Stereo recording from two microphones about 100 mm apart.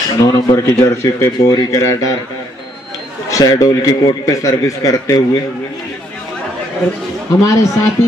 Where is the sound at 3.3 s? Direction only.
40° left (ahead or behind).